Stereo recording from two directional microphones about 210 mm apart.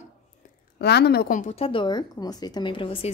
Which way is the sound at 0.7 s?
50° left (ahead or behind).